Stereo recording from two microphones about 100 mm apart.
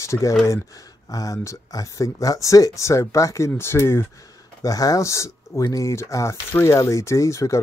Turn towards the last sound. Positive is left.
turn(degrees=30)  # may be behind; listen again after turning